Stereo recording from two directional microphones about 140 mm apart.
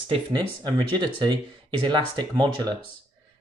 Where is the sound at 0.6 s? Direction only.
30° right (ahead or behind).